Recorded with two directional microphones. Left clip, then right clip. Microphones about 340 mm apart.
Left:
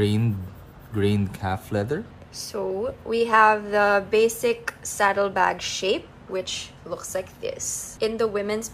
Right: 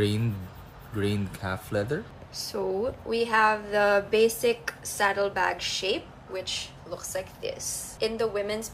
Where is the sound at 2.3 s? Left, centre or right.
Centre.